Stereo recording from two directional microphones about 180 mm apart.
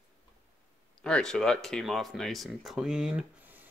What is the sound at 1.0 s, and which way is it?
Speech, 5° left (ahead or behind).